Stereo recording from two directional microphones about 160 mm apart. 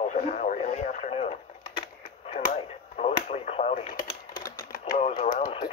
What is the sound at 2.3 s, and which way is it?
Radio, 55° left (ahead or behind).